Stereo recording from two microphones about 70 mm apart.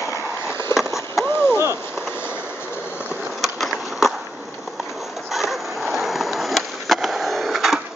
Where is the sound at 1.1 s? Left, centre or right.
Left.